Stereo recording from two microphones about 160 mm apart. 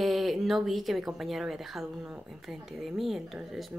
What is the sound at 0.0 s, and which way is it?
Speech, centre (ahead or behind).